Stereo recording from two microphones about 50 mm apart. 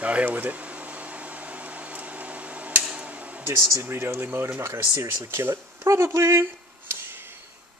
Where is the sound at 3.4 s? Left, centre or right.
Right.